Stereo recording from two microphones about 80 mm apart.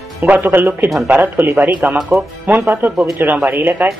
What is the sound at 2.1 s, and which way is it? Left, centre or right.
Speech, right.